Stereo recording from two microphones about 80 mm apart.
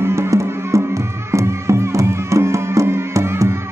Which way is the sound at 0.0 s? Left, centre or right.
Right.